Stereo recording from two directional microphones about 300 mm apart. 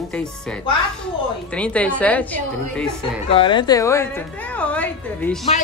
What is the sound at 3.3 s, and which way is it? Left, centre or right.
A woman's voice, centre.